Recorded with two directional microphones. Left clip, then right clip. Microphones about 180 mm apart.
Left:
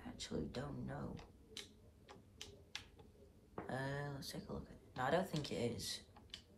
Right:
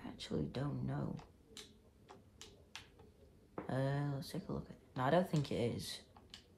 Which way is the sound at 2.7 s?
20° right (ahead or behind).